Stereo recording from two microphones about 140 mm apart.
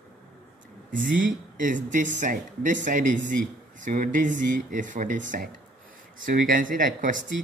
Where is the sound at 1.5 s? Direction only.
70° right (ahead or behind).